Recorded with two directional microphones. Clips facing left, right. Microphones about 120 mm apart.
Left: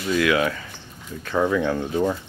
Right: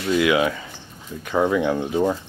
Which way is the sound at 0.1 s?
15° right (ahead or behind).